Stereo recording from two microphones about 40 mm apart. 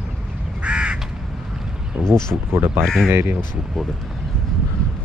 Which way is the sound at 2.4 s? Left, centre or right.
Right.